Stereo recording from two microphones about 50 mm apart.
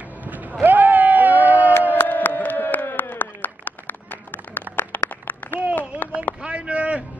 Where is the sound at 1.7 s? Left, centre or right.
Left.